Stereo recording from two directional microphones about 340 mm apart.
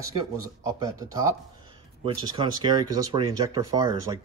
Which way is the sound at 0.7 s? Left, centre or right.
Centre.